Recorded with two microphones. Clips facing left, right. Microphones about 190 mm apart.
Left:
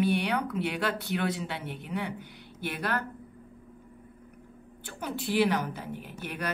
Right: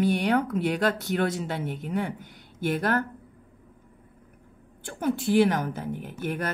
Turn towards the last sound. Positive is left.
turn(degrees=-50)  # may be behind; listen again after turning